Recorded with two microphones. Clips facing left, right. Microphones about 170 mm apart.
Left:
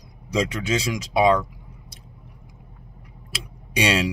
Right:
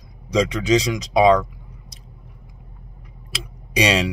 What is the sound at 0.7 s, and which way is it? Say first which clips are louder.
Speech: right 6 dB; 5° left (ahead or behind).